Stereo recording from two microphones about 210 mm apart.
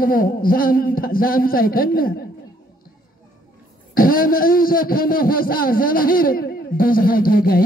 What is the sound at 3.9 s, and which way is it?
A man's voice, 40° left (ahead or behind).